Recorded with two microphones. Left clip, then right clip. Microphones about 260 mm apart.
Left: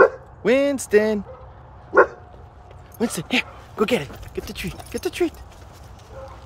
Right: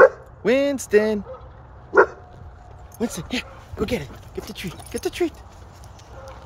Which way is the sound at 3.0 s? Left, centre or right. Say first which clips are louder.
Left 5 dB; centre.